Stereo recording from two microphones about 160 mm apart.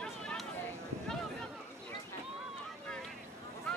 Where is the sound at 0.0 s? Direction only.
5° left (ahead or behind).